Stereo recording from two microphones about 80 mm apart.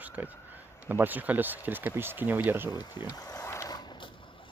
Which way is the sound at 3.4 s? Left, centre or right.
Left.